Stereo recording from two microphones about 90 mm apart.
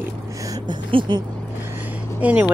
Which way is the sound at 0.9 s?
70° right (ahead or behind).